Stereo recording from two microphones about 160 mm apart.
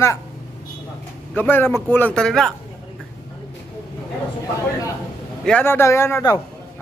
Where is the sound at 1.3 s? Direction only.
10° left (ahead or behind).